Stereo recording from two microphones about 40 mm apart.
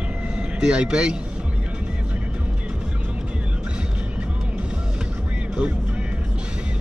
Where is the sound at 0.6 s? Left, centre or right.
Right.